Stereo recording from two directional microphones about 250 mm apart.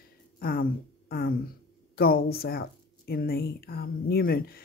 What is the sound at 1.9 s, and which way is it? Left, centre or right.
Speech, left.